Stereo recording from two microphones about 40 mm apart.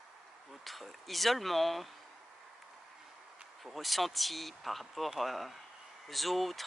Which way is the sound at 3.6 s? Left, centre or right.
Centre.